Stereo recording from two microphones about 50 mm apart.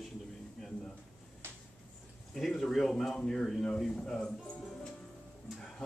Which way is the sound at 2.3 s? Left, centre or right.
Centre.